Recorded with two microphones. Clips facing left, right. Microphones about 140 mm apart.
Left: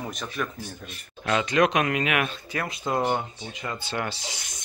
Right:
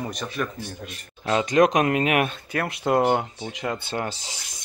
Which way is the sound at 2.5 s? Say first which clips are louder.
Right 5 dB; 60° right (ahead or behind).